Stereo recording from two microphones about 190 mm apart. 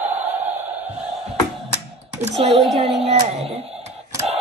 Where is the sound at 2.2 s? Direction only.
35° right (ahead or behind).